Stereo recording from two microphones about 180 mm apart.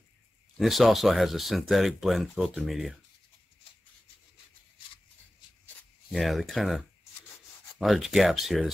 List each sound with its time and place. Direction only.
0.6 s speech: centre (ahead or behind)
6.1 s speech: centre (ahead or behind)